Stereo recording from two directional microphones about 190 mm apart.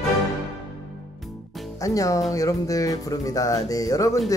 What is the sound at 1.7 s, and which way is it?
Speech, 20° left (ahead or behind).